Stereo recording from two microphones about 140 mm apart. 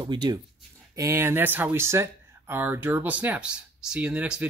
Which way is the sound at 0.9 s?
20° right (ahead or behind).